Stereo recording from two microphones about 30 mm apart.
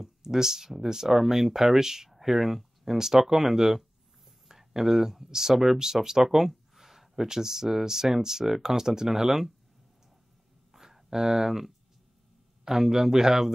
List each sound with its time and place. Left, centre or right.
0.0 s speech: centre
2.0 s speech: centre
2.8 s speech: centre
6.2 s speech: centre
10.7 s a sound: centre
12.6 s speech: centre